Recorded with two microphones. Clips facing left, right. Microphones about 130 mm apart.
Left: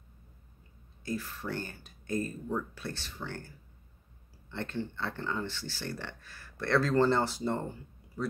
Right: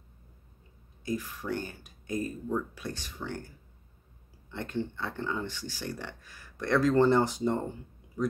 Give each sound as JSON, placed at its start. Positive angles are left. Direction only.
{"t": 1.0, "sound": "speech", "side_deg": -15}